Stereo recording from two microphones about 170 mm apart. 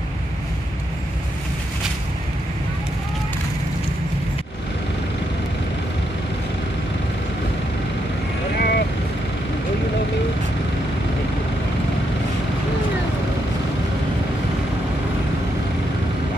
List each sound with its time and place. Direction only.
8.5 s vehicle: 70° left (ahead or behind)